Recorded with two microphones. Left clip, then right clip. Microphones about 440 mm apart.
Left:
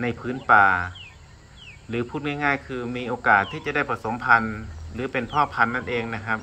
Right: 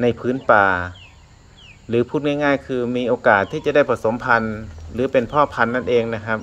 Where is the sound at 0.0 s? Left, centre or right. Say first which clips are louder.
Right 9 dB; centre.